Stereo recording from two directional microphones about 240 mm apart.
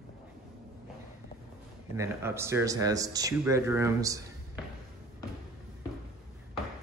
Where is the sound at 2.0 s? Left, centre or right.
Centre.